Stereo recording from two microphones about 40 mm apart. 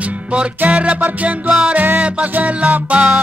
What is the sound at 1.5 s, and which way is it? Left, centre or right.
Music, right.